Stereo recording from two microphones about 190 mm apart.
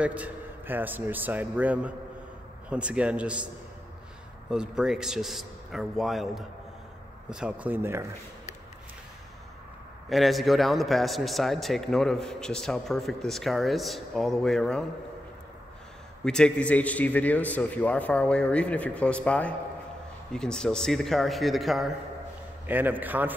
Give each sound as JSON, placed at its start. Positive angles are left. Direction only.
{"t": 0.0, "sound": "a man's voice", "side_deg": -5}
{"t": 4.5, "sound": "a man's voice", "side_deg": -5}
{"t": 10.0, "sound": "a man's voice", "side_deg": 0}
{"t": 16.3, "sound": "a man's voice", "side_deg": 5}